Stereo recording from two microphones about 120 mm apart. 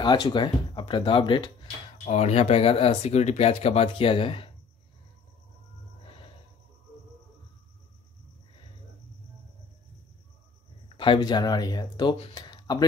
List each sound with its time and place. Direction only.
0.0 s speech: 40° left (ahead or behind)
2.0 s speech: 65° left (ahead or behind); by 4.5 s 50° left (ahead or behind)
11.0 s speech: 40° left (ahead or behind)
12.4 s a sound: 35° left (ahead or behind)